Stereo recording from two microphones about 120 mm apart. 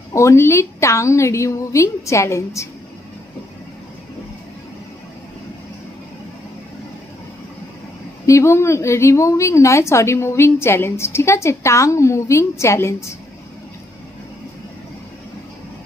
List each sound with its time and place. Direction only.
0.1 s a woman's voice: 25° left (ahead or behind)
8.3 s a woman's voice: 25° left (ahead or behind)